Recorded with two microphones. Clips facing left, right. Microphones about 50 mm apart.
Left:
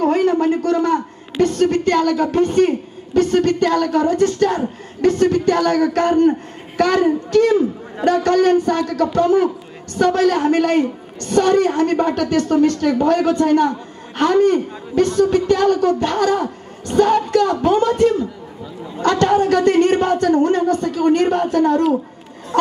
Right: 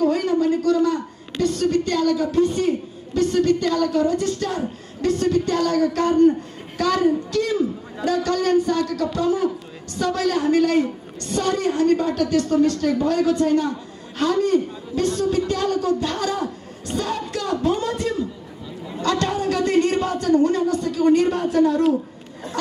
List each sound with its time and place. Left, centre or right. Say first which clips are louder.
0.0 s a man's voice: left 4 dB; left